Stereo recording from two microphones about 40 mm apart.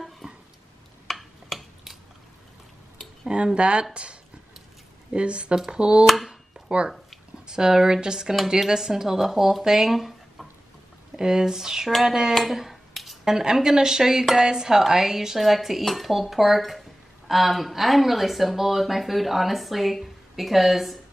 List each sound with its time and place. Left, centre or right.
0.2 s a sound: right
1.0 s a sound: centre
3.5 s speech: right
7.4 s speech: centre
11.1 s speech: centre
12.4 s finger snapping: centre
13.2 s speech: centre